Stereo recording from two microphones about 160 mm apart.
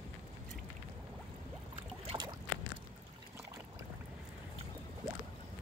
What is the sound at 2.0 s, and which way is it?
Boat, 25° right (ahead or behind).